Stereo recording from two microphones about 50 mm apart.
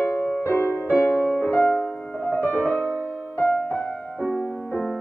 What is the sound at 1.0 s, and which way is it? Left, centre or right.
Music, left.